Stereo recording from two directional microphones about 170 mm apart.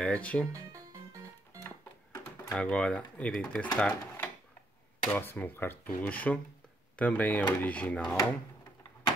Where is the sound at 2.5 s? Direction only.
5° left (ahead or behind).